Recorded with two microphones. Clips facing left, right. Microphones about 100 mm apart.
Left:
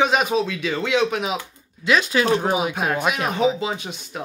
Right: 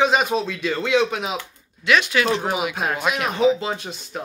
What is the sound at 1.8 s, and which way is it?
Speech, 30° left (ahead or behind).